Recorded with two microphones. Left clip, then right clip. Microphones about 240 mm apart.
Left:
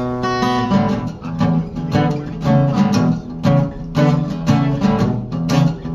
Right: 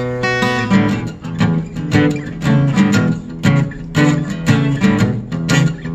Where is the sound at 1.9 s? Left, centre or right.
Right.